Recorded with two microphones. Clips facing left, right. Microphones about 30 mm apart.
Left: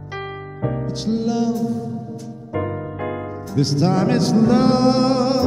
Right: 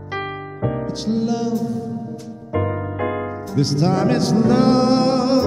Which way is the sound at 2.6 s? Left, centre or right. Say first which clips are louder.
Right 2 dB; right.